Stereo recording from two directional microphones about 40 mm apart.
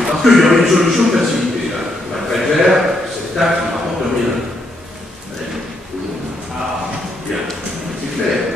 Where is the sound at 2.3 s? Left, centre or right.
Centre.